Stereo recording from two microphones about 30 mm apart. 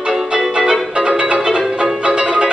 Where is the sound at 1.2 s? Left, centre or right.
Right.